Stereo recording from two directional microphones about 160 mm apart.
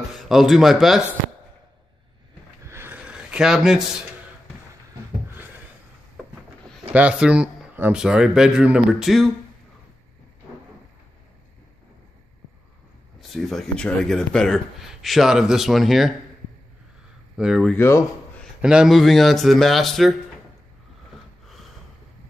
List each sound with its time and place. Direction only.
0.2 s speech: centre (ahead or behind)
2.6 s a sound: 15° right (ahead or behind)
6.9 s speech: 10° right (ahead or behind)
13.3 s speech: centre (ahead or behind)
17.4 s speech: centre (ahead or behind)
17.7 s speech: 15° left (ahead or behind)
18.6 s speech: 5° right (ahead or behind)